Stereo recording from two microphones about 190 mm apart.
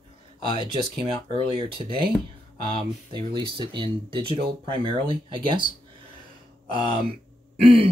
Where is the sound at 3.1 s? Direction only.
25° right (ahead or behind).